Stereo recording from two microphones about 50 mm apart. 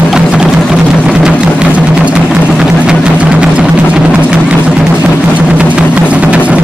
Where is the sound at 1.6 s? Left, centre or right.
Centre.